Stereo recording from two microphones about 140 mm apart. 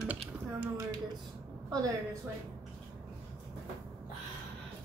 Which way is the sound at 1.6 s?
25° right (ahead or behind).